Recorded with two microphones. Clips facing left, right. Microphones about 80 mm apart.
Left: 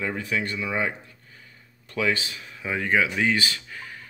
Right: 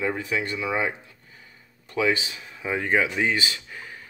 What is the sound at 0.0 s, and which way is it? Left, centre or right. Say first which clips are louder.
Speech: right 1 dB; centre.